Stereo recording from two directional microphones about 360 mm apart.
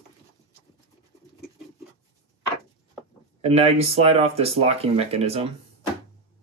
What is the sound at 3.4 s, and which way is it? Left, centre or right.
Speech, centre.